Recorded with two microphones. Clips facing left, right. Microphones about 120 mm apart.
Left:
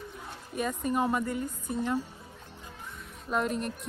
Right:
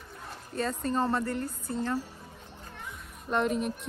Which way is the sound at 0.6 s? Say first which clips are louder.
Even; 15° left (ahead or behind).